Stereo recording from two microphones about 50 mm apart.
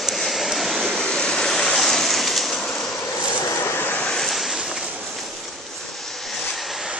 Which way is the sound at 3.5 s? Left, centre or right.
Left.